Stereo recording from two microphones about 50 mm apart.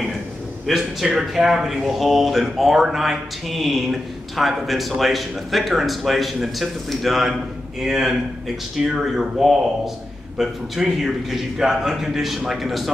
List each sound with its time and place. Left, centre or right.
0.7 s a man's voice: centre